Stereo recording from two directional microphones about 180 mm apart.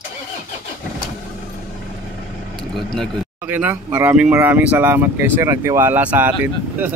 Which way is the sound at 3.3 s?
10° right (ahead or behind).